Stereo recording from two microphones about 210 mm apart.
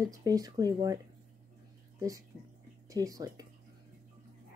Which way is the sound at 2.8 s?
15° right (ahead or behind).